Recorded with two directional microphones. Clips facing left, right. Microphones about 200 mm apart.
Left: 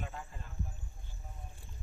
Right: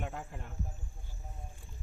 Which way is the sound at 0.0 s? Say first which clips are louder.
Right 4 dB; 60° right (ahead or behind).